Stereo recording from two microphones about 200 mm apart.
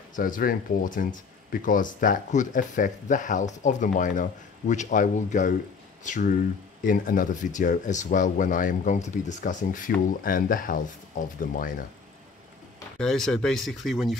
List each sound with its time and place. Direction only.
0.1 s speech: 40° left (ahead or behind)
13.0 s speech: 5° left (ahead or behind)